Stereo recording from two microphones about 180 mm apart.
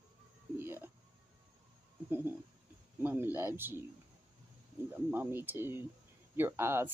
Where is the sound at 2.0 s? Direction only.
10° right (ahead or behind).